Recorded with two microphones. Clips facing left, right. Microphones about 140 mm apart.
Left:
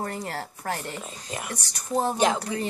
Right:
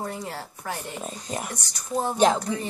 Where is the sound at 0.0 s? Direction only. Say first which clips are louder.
Left 1 dB; 50° left (ahead or behind).